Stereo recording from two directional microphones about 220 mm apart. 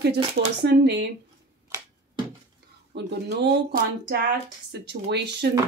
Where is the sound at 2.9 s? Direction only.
50° right (ahead or behind).